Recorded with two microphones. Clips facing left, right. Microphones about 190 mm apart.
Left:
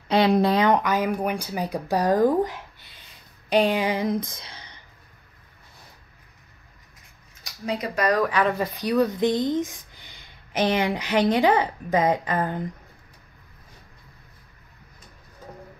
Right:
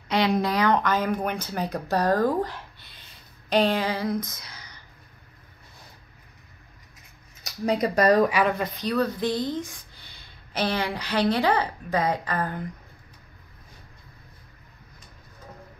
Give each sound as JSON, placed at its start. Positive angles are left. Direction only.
{"t": 0.1, "sound": "speech", "side_deg": 30}
{"t": 7.6, "sound": "speech", "side_deg": -40}
{"t": 8.3, "sound": "speech", "side_deg": -10}
{"t": 8.5, "sound": "speech", "side_deg": 15}